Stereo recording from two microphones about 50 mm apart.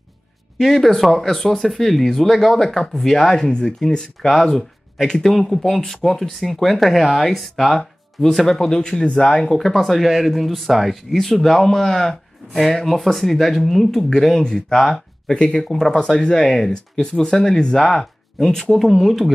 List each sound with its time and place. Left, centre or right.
0.6 s speech: centre
15.7 s speech: centre